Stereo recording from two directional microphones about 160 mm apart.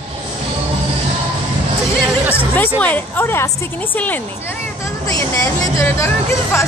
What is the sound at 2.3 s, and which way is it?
A woman's voice, 10° left (ahead or behind).